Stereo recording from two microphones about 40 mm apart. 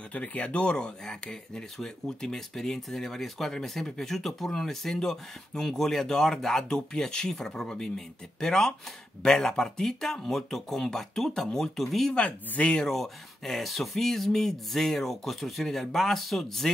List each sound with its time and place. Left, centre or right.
0.1 s speech: left
0.5 s speech: left; by 16.7 s centre